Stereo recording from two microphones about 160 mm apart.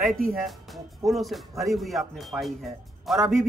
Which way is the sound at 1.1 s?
Centre (ahead or behind).